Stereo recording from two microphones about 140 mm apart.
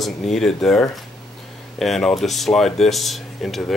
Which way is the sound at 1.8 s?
Centre (ahead or behind).